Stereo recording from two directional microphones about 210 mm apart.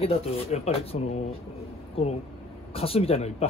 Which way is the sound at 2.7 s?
30° left (ahead or behind).